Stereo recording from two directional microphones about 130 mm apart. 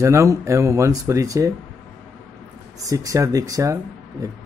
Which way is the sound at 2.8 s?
25° right (ahead or behind).